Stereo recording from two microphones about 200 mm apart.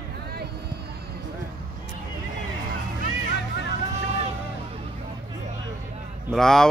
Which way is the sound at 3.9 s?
30° right (ahead or behind).